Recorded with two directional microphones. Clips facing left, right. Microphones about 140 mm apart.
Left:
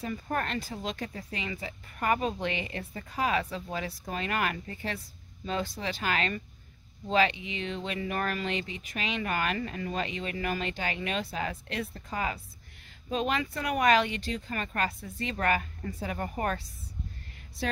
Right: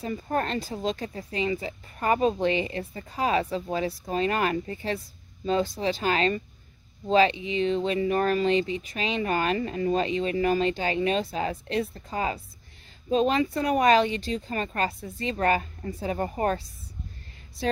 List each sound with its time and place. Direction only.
0.0 s speech: 30° right (ahead or behind)